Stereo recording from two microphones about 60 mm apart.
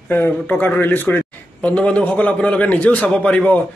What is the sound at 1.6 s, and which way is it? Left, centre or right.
A man's voice, centre.